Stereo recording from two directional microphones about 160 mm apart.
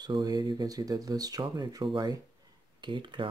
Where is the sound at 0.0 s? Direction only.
25° right (ahead or behind).